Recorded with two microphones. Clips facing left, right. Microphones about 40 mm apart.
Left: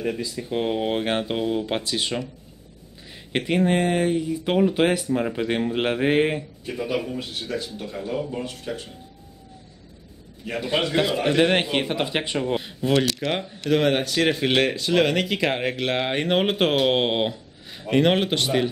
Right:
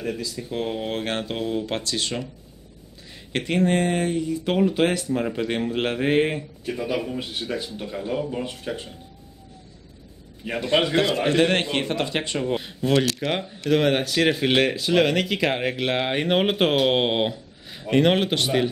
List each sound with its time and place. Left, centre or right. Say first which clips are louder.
0.0 s speech: left 2 dB; centre
3.3 s speech: even; centre
7.2 s speech: right 1 dB; centre
10.4 s a man's voice: right 1 dB; right
11.0 s speech: even; centre